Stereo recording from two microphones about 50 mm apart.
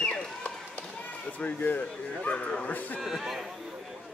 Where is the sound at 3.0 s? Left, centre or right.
Centre.